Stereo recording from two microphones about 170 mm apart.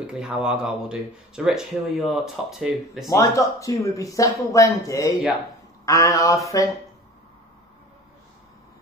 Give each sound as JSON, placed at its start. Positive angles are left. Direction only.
{"t": 0.0, "sound": "speech", "side_deg": -5}
{"t": 3.2, "sound": "speech", "side_deg": 20}